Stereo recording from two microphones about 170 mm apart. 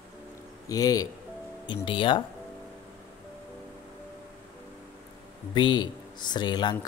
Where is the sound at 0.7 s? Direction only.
20° left (ahead or behind).